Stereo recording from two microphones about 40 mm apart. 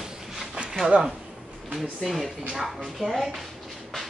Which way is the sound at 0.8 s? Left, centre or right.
Right.